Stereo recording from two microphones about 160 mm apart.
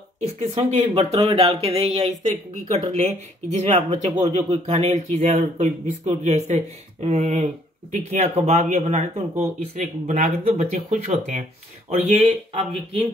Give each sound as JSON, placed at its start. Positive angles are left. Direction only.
{"t": 0.4, "sound": "speech", "side_deg": -45}